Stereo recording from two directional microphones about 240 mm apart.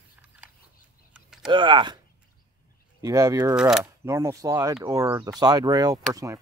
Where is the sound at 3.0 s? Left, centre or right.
Centre.